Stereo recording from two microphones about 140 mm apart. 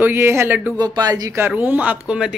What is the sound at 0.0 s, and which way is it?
Speech, 15° right (ahead or behind).